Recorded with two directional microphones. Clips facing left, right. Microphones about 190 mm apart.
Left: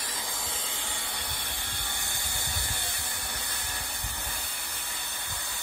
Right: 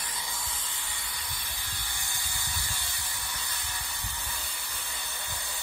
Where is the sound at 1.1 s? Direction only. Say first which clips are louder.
Left 4 dB; 65° left (ahead or behind).